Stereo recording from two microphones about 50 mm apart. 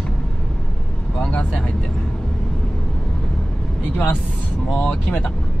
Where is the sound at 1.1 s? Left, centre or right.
Left.